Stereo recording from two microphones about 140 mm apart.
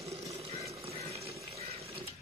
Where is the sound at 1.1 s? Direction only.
45° right (ahead or behind).